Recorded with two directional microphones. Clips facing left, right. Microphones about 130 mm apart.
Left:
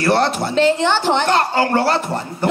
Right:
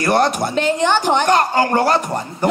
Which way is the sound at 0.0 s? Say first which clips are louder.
Right 1 dB; 15° right (ahead or behind).